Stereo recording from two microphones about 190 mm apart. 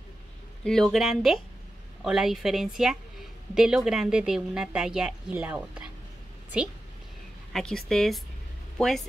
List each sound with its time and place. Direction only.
0.7 s a woman's voice: centre (ahead or behind)
7.5 s a woman's voice: 5° left (ahead or behind)